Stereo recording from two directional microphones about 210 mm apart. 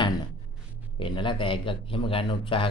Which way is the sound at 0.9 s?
25° left (ahead or behind).